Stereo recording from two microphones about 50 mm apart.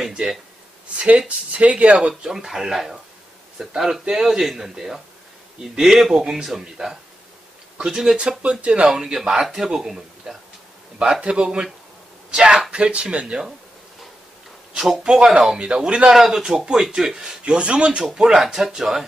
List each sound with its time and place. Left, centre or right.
0.1 s speech: centre
0.9 s speech: right
2.0 s a man's voice: centre
8.2 s speech: right
8.8 s a man's voice: centre
14.8 s a man's voice: centre
16.1 s a man's voice: centre
18.0 s a man's voice: centre